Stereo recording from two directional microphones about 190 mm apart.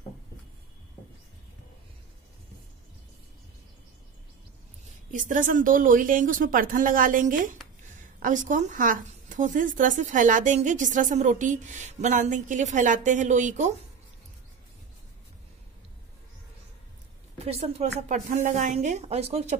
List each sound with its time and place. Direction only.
5.1 s a woman's voice: 45° right (ahead or behind)
17.5 s speech: 35° right (ahead or behind)